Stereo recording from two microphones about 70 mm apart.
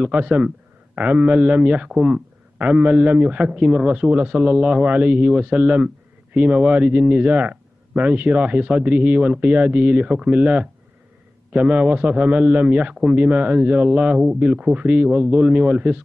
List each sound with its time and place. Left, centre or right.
0.0 s speech: centre